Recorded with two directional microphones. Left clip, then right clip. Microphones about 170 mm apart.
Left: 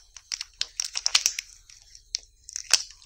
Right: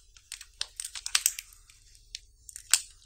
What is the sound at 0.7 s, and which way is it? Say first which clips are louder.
Computer keyboard: left 11 dB; 30° left (ahead or behind).